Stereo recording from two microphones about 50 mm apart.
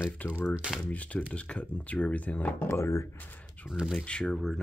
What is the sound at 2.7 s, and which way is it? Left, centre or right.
Speech, left.